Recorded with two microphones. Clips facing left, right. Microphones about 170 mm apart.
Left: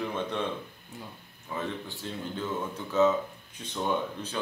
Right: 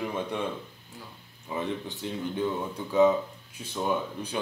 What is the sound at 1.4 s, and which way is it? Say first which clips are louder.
Speech: right 3 dB; 20° right (ahead or behind).